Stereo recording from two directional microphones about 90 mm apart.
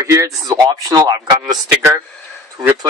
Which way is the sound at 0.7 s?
45° right (ahead or behind).